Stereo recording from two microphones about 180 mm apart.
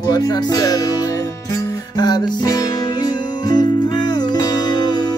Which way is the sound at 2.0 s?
20° left (ahead or behind).